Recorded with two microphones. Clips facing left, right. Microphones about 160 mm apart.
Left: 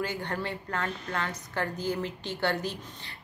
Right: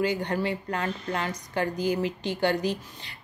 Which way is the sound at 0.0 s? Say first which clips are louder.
Right 6 dB; 15° right (ahead or behind).